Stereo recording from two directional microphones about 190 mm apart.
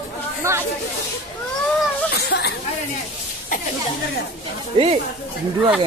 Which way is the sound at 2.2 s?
60° left (ahead or behind).